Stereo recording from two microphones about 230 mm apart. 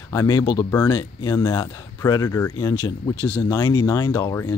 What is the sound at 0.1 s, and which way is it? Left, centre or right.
Speech, centre.